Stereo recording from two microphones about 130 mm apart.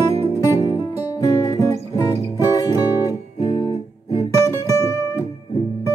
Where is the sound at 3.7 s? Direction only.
55° left (ahead or behind).